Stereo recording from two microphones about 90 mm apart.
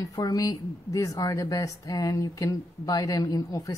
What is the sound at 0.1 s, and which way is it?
Speech, 45° left (ahead or behind).